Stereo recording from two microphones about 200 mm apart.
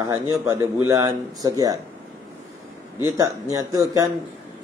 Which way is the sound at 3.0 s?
15° right (ahead or behind).